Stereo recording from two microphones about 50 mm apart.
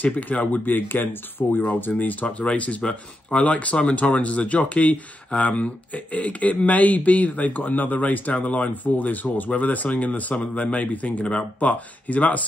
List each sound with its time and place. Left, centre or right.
0.0 s speech: left